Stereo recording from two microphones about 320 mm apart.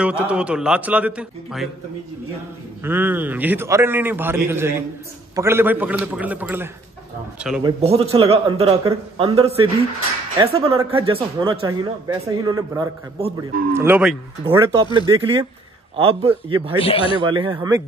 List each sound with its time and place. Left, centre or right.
0.0 s a man's voice: centre
2.8 s a man's voice: centre
7.6 s a man's voice: centre
16.7 s a man's voice: centre
17.2 s a man's voice: centre